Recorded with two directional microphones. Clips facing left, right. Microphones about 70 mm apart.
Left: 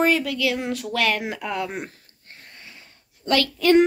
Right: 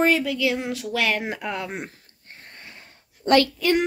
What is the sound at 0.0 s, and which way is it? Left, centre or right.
Speech, centre.